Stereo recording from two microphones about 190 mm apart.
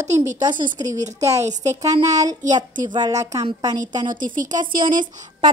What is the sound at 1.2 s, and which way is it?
A woman's voice, 15° right (ahead or behind).